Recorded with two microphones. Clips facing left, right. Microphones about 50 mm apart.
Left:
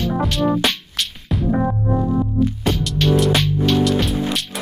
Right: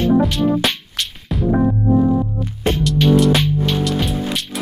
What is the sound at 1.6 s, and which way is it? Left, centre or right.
Music, left.